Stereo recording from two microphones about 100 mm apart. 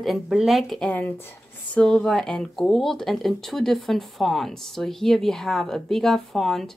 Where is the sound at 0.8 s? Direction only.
15° left (ahead or behind).